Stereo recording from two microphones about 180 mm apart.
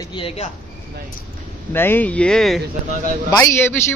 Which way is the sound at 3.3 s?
15° left (ahead or behind).